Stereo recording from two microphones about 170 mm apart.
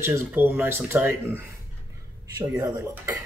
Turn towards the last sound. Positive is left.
turn(degrees=-20)  # may be behind; listen again after turning